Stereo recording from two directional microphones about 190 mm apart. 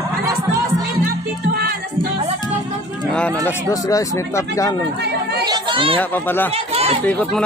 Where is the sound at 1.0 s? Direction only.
55° right (ahead or behind).